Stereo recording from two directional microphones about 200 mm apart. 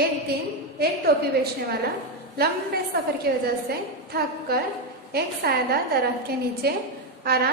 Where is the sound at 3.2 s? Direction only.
50° right (ahead or behind).